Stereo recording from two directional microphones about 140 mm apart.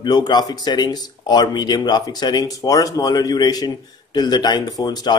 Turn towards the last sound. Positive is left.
turn(degrees=30)  # may be behind; listen again after turning